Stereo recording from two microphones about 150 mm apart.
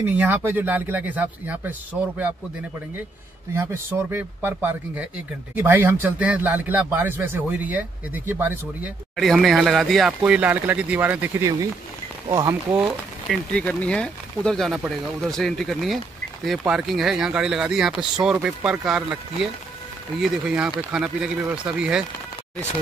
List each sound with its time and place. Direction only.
0.2 s a man's voice: 15° right (ahead or behind)
4.1 s a man's voice: 15° right (ahead or behind)
9.1 s a man's voice: centre (ahead or behind); by 12.5 s 20° right (ahead or behind)
13.3 s speech: 5° left (ahead or behind)